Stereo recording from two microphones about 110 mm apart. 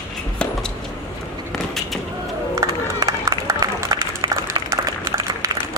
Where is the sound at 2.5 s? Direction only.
30° right (ahead or behind).